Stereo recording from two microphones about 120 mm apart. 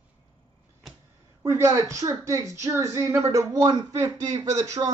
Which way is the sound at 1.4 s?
25° right (ahead or behind).